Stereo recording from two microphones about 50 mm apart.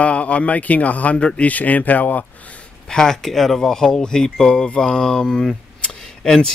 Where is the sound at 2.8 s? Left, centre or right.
Centre.